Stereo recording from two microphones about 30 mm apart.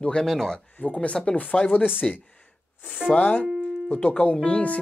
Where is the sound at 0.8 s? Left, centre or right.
Left.